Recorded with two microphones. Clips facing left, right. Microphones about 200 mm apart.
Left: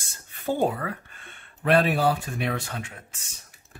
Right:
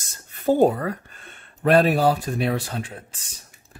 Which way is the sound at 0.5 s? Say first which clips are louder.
Right 7 dB; 40° right (ahead or behind).